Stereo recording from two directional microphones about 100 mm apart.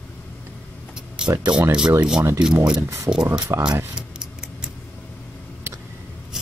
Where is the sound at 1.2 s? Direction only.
5° right (ahead or behind).